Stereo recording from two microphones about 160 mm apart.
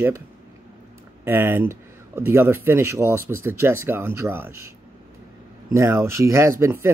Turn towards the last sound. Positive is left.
turn(degrees=-15)  # may be behind; listen again after turning